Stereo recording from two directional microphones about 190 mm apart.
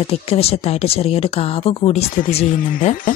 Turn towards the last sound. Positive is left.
turn(degrees=40)  # may be behind; listen again after turning